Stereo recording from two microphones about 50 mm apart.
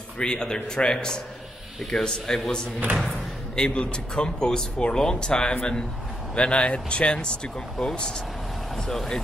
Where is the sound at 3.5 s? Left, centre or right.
Centre.